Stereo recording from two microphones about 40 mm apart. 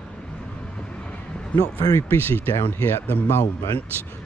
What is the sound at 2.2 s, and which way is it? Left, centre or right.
Speech, left.